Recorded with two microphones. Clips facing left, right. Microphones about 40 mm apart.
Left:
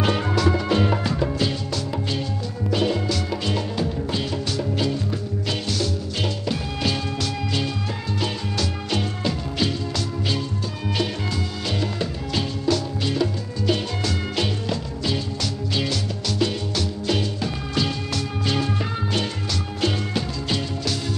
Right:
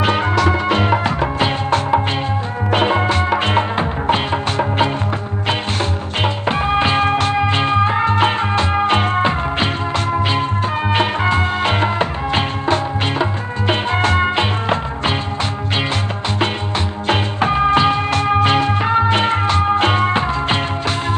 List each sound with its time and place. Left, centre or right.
0.0 s music: right
16.3 s music: right